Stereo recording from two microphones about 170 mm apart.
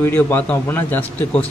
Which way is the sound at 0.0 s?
10° left (ahead or behind).